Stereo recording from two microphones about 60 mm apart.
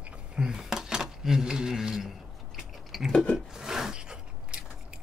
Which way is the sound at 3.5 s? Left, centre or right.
Centre.